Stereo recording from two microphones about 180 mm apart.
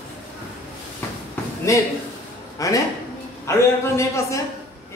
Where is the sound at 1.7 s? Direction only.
15° left (ahead or behind).